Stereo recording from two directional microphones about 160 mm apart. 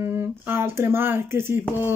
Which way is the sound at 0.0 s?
15° right (ahead or behind).